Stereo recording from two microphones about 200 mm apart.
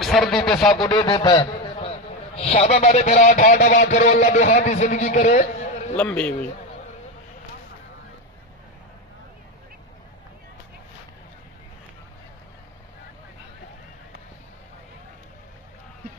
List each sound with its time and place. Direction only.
0.0 s speech: centre (ahead or behind)
0.8 s a man's voice: 25° left (ahead or behind)
5.9 s a man's voice: 5° left (ahead or behind)